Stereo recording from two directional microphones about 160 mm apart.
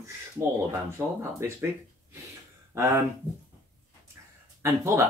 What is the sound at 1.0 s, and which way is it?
Speech, 15° right (ahead or behind).